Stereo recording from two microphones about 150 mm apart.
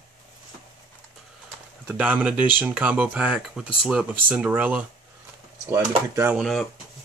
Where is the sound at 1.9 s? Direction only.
10° right (ahead or behind).